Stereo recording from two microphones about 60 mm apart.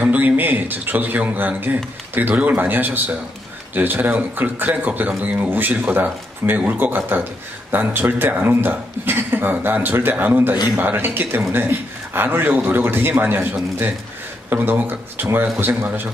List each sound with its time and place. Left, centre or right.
0.0 s speech: right